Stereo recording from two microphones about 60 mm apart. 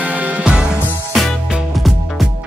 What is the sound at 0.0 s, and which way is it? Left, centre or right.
Music, right.